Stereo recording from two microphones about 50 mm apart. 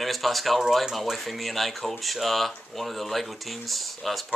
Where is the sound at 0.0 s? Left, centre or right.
Centre.